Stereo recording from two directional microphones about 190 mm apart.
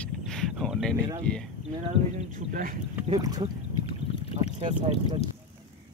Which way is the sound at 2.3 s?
45° right (ahead or behind).